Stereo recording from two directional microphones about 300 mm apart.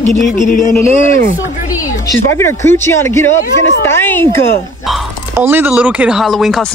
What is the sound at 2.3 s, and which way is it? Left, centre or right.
Speech, centre.